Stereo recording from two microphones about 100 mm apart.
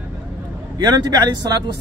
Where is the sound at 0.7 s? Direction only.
40° right (ahead or behind).